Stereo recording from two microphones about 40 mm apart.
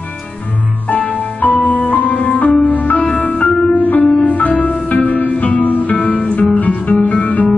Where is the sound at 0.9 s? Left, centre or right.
Left.